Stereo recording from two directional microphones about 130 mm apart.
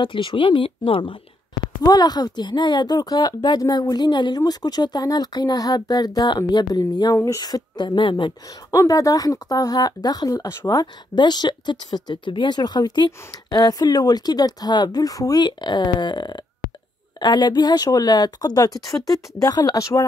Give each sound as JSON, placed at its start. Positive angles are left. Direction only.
{"t": 0.0, "sound": "speech", "side_deg": 40}
{"t": 1.8, "sound": "speech", "side_deg": 30}
{"t": 8.7, "sound": "speech", "side_deg": 25}